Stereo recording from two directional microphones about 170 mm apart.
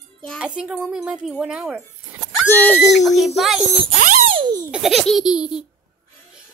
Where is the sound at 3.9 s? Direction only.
50° right (ahead or behind).